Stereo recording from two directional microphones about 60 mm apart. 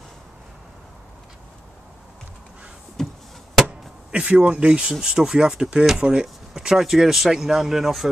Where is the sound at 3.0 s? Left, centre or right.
Centre.